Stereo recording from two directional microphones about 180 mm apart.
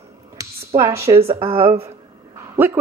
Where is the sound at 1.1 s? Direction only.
35° right (ahead or behind).